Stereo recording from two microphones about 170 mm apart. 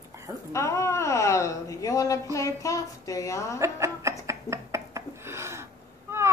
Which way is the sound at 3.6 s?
15° right (ahead or behind).